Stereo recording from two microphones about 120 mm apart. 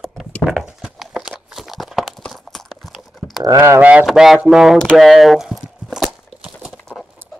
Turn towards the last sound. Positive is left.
turn(degrees=5)  # may be behind; listen again after turning